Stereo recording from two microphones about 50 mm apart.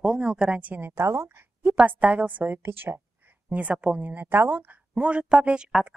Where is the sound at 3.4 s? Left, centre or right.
Right.